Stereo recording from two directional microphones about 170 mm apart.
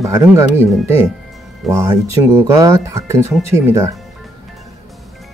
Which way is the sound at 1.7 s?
15° right (ahead or behind).